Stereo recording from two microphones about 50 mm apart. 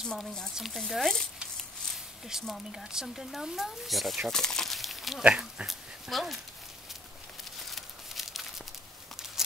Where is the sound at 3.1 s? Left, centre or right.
Centre.